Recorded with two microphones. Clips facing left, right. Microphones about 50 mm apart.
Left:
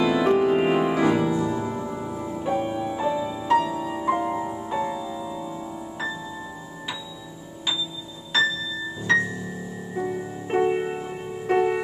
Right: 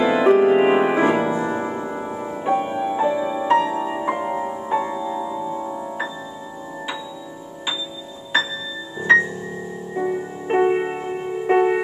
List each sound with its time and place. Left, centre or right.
0.0 s music: right
9.1 s music: right